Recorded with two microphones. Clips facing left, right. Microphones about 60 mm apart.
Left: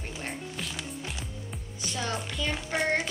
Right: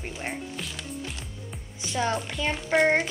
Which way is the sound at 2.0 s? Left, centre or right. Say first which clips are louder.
Right 5 dB; right.